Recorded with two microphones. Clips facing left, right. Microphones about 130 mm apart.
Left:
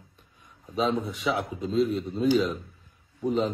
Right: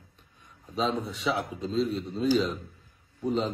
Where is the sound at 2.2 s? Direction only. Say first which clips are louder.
Left 2 dB; centre (ahead or behind).